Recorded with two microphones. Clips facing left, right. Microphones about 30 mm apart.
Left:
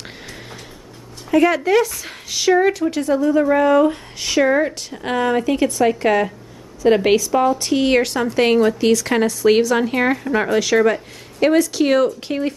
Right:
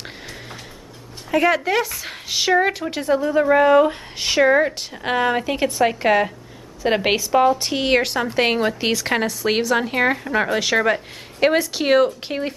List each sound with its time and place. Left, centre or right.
1.3 s a woman's voice: centre
8.5 s a woman's voice: right
9.1 s speech: centre
10.6 s a woman's voice: centre